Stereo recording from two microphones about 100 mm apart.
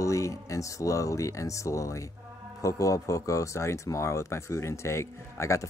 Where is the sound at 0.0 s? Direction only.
30° left (ahead or behind).